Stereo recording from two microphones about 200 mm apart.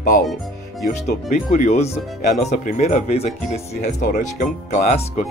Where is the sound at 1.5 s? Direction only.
35° left (ahead or behind).